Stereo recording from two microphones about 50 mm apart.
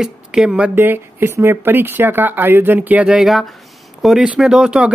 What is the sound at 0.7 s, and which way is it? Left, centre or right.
Speech, right.